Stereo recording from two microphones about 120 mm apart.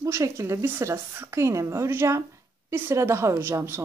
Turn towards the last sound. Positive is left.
turn(degrees=-20)  # may be behind; listen again after turning